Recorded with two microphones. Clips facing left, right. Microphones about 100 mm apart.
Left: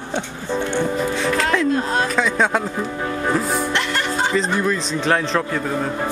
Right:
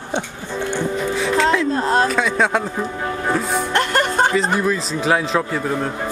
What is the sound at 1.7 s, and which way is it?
Speech, 35° right (ahead or behind).